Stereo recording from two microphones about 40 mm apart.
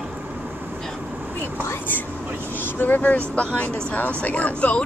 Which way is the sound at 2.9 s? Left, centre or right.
Left.